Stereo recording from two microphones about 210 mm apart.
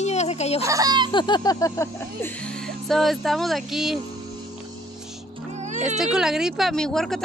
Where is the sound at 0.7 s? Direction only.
15° right (ahead or behind).